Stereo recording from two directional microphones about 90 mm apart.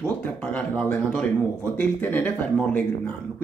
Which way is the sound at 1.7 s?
20° left (ahead or behind).